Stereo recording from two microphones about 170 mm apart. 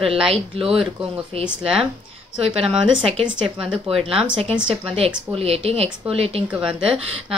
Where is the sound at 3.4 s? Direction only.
Centre (ahead or behind).